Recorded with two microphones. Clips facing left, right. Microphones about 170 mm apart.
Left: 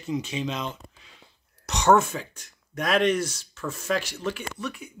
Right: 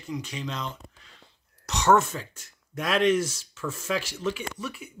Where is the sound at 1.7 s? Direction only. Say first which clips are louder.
Left 1 dB; centre (ahead or behind).